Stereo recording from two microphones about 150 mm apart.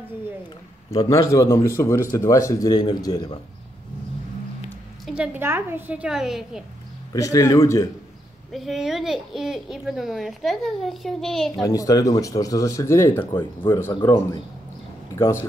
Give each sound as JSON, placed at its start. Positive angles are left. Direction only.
{"t": 0.9, "sound": "speech", "side_deg": 20}
{"t": 5.0, "sound": "a woman's voice", "side_deg": -5}
{"t": 7.1, "sound": "speech", "side_deg": 20}
{"t": 8.5, "sound": "speech", "side_deg": 0}
{"t": 11.6, "sound": "speech", "side_deg": 25}